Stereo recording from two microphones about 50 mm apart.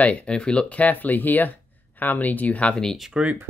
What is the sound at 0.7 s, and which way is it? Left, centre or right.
Speech, left.